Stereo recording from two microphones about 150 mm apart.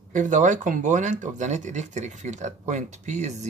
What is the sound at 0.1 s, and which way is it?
Speech, 55° right (ahead or behind).